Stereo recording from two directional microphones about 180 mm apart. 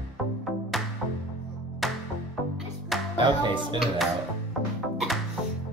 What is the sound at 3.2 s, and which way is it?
Speech, 25° right (ahead or behind).